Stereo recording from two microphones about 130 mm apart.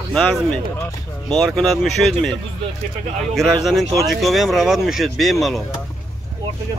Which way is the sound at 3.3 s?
Centre (ahead or behind).